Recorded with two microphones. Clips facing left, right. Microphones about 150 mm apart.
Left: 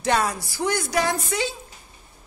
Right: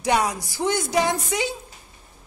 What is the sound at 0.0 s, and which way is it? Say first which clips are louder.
A woman's voice: right 1 dB; 15° right (ahead or behind).